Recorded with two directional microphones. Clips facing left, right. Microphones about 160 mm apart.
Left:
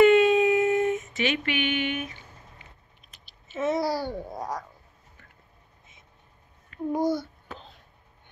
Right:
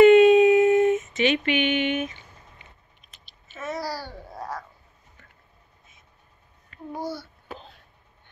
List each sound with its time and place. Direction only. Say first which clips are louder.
0.0 s a sound: right 5 dB; 20° right (ahead or behind)
3.5 s speech: left 6 dB; 20° left (ahead or behind)
6.9 s a child's voice: left 7 dB; 20° left (ahead or behind)